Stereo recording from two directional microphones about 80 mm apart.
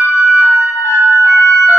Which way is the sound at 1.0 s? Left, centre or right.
Right.